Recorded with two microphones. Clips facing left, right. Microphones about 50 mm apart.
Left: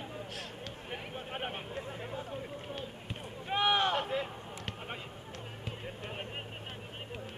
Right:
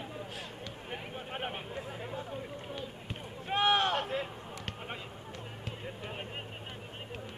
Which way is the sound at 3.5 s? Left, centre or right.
Centre.